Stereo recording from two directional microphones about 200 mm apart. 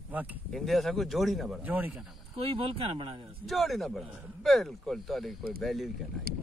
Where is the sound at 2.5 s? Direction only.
30° right (ahead or behind).